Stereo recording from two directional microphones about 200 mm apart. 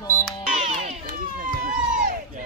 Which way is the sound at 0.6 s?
35° right (ahead or behind).